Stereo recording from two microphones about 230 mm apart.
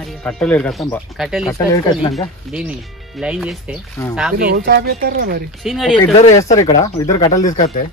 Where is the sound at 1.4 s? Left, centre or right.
Centre.